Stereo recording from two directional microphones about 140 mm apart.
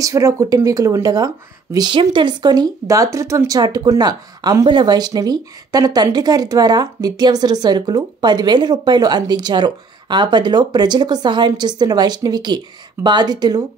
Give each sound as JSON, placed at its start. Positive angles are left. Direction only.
{"t": 0.0, "sound": "speech", "side_deg": -20}